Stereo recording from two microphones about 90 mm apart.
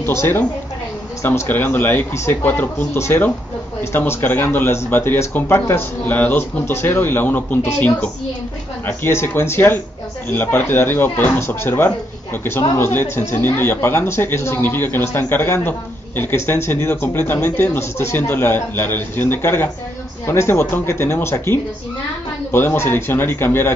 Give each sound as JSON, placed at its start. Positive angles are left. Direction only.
{"t": 0.0, "sound": "speech", "side_deg": 25}